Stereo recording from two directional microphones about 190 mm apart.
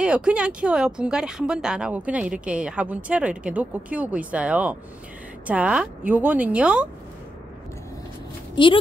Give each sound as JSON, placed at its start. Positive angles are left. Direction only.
{"t": 0.0, "sound": "a woman's voice", "side_deg": -5}
{"t": 8.6, "sound": "a woman's voice", "side_deg": 25}